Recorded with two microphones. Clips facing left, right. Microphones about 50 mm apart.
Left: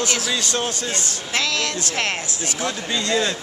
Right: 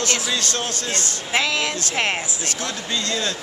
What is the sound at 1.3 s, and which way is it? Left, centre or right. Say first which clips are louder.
Speech: right 2 dB; centre.